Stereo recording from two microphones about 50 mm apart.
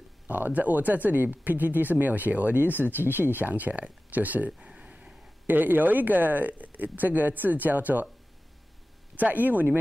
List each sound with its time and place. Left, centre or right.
0.3 s speech: right
4.5 s a sound: centre
5.5 s speech: right
9.1 s speech: right